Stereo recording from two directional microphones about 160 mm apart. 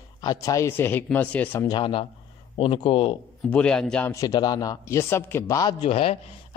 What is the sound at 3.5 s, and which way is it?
Speech, 5° left (ahead or behind).